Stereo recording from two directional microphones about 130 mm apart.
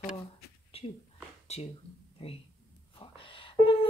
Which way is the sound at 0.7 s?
45° left (ahead or behind).